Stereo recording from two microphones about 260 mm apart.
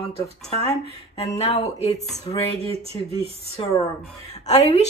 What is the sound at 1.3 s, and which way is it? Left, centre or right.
Speech, left.